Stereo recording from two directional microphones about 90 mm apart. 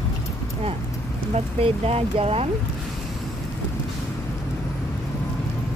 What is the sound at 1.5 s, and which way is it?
Speech, 90° right.